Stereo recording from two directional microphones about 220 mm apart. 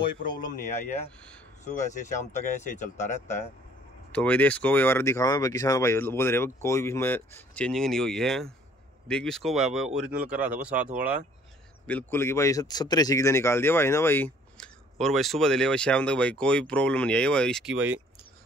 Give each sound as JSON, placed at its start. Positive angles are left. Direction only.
{"t": 0.8, "sound": "speech", "side_deg": 30}
{"t": 4.1, "sound": "speech", "side_deg": 5}
{"t": 11.8, "sound": "speech", "side_deg": 10}